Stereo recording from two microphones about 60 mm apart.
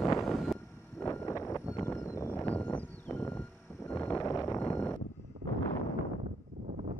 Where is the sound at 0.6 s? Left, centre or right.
Left.